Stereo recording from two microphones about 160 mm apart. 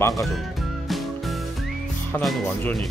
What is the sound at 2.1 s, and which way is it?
Speech, 10° left (ahead or behind).